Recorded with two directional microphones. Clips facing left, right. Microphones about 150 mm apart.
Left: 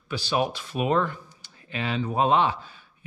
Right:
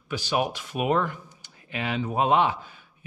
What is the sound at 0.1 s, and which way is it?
Speech, 15° right (ahead or behind).